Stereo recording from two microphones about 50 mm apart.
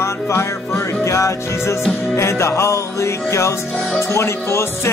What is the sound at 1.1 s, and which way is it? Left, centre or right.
Music, left.